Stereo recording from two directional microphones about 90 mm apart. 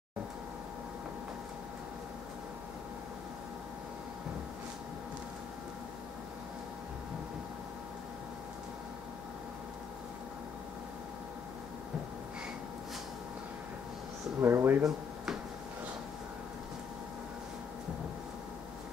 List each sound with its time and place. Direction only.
14.4 s speech: 25° right (ahead or behind)